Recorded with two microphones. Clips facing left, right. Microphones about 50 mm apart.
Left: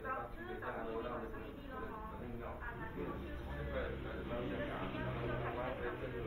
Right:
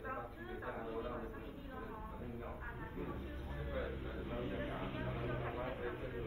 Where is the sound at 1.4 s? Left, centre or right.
Left.